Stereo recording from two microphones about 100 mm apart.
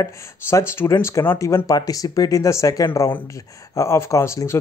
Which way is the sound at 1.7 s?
35° left (ahead or behind).